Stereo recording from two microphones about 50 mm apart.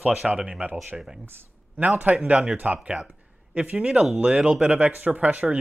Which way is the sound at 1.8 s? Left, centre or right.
Right.